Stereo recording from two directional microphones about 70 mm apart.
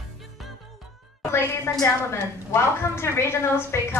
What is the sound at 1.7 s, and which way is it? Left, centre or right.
A woman's voice, left.